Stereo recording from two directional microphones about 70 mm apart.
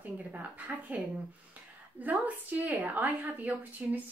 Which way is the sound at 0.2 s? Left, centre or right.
Right.